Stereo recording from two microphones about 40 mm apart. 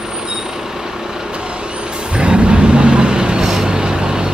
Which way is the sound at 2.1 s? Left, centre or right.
Right.